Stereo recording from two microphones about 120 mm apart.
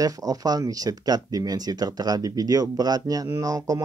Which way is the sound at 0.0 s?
30° right (ahead or behind).